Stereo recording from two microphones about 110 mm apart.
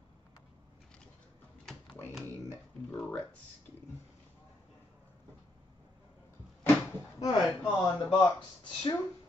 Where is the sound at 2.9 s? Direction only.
10° left (ahead or behind).